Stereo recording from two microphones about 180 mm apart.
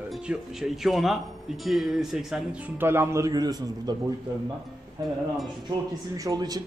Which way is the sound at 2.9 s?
15° right (ahead or behind).